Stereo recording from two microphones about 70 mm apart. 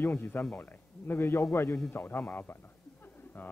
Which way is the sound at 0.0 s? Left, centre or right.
Left.